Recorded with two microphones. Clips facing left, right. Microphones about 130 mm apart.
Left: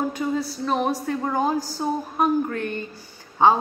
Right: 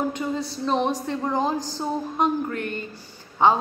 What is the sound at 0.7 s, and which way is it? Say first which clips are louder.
A man's voice: right 1 dB; 5° left (ahead or behind).